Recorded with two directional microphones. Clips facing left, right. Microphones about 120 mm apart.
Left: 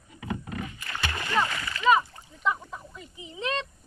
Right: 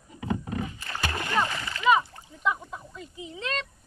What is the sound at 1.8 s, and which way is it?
Splash, 5° right (ahead or behind).